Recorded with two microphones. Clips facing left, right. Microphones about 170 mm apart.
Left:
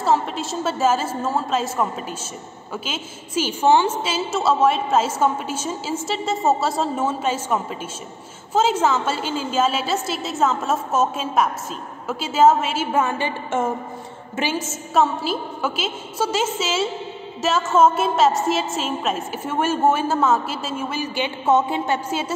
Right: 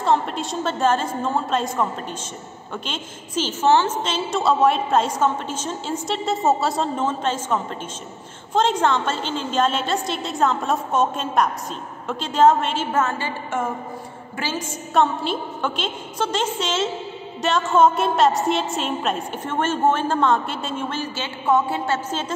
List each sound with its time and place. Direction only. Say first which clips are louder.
0.0 s a woman's voice: even; 5° left (ahead or behind)
14.7 s a woman's voice: right 2 dB; 5° left (ahead or behind)